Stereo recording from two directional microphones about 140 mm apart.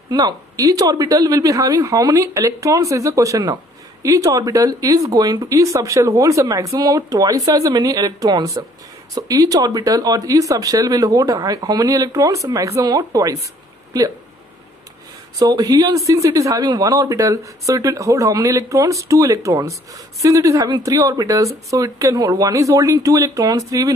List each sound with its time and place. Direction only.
0.1 s speech: 25° right (ahead or behind)
15.3 s speech: 30° right (ahead or behind)